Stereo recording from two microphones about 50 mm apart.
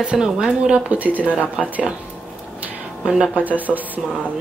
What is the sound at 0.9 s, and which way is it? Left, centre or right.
Speech, right.